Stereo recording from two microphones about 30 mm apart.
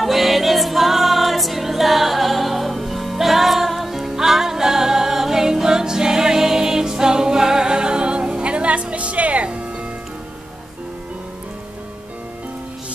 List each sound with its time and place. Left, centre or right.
0.0 s music: centre; by 9.7 s right